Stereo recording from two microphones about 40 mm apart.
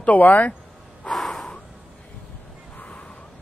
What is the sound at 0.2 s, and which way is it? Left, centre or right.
Speech, left.